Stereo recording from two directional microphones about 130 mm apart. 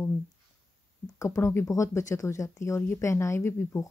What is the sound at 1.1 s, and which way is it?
Speech, 25° left (ahead or behind).